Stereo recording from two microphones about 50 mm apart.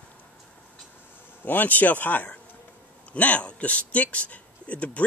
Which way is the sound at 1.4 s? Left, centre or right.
Left.